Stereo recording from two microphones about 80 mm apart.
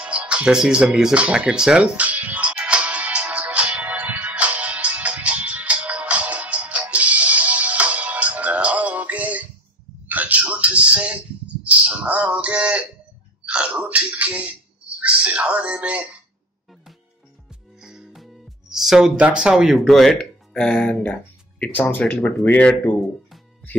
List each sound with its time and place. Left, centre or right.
0.0 s speech: centre
1.2 s music: centre
10.0 s a sound: right
17.7 s music: centre
19.1 s speech: centre
21.0 s music: centre
21.7 s speech: centre